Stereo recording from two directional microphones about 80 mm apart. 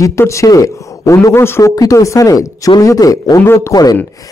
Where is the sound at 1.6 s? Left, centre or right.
Left.